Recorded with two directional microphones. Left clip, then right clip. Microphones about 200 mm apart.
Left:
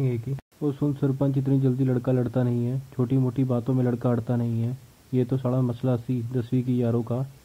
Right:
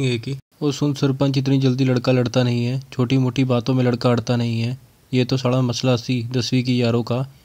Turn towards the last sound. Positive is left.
turn(degrees=-30)  # may be behind; listen again after turning